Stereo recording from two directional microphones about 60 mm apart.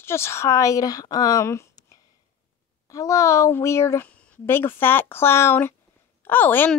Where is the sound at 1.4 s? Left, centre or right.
Left.